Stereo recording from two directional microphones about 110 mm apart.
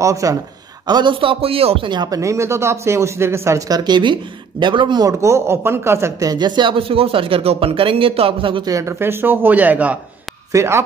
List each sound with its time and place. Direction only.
0.0 s speech: 30° right (ahead or behind)
0.8 s speech: 45° right (ahead or behind); by 1.9 s 60° right (ahead or behind)
1.9 s speech: 35° right (ahead or behind)
5.2 s speech: 25° right (ahead or behind); by 8.6 s 50° right (ahead or behind)
8.6 s speech: 30° right (ahead or behind)
10.5 s speech: 25° right (ahead or behind)